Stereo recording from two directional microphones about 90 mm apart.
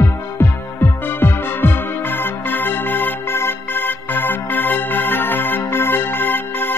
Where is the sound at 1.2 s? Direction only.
25° left (ahead or behind).